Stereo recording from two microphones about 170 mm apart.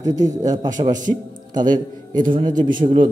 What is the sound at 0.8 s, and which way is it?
Speech, 50° right (ahead or behind).